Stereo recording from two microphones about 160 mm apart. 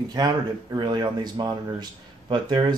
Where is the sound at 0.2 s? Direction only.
25° right (ahead or behind).